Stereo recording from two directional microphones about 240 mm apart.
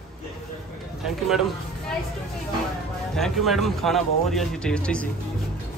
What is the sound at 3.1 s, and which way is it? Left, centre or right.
A man's voice, centre.